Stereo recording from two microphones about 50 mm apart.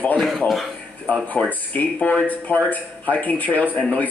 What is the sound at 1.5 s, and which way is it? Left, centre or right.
Speech, left.